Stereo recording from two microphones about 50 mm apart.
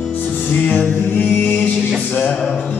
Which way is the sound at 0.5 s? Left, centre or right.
Left.